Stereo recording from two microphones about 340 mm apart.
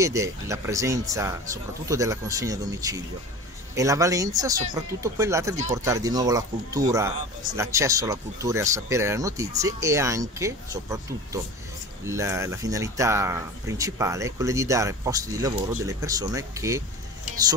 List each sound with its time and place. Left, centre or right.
0.0 s speech: centre
5.6 s speech: centre
12.0 s speech: centre